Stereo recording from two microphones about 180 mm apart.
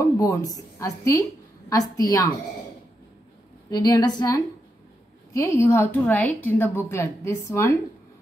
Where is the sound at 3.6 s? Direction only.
20° left (ahead or behind).